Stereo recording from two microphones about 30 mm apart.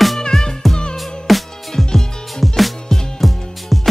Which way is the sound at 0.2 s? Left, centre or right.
Centre.